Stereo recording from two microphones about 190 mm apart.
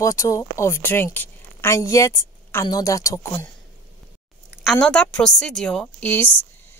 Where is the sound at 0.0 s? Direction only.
15° left (ahead or behind).